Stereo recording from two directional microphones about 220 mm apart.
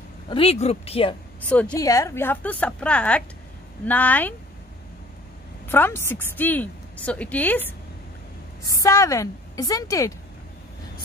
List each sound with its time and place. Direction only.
0.3 s speech: 25° left (ahead or behind)
1.5 s a woman's voice: 5° left (ahead or behind)
5.7 s a woman's voice: 10° left (ahead or behind)